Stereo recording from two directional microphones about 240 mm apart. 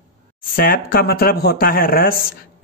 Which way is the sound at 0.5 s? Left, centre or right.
Left.